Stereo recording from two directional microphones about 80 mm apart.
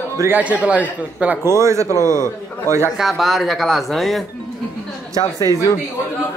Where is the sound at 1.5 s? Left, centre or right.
Right.